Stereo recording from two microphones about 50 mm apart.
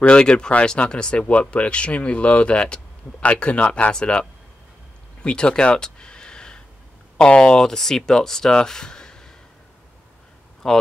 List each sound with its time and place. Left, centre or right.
0.0 s speech: centre
5.2 s a sound: centre
7.2 s speech: centre
10.6 s speech: centre